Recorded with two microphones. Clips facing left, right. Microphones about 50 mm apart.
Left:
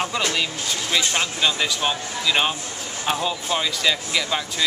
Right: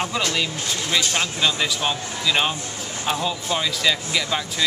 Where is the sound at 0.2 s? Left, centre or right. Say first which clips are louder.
Even; centre.